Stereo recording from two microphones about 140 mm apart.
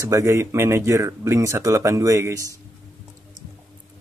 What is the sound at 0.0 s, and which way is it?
Speech, 20° right (ahead or behind).